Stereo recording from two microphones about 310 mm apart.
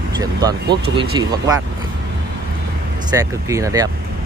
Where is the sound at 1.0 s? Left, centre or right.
Centre.